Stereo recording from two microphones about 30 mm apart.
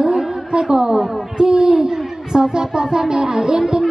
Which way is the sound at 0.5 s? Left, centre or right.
Right.